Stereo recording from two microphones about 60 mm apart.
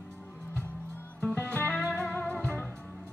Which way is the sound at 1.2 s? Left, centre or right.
Left.